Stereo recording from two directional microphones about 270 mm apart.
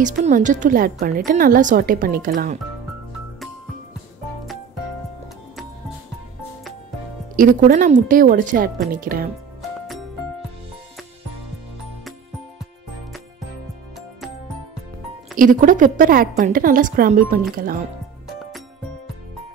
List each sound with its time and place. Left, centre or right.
0.0 s a woman's voice: right
7.3 s a woman's voice: right
9.6 s music: centre
15.3 s a woman's voice: right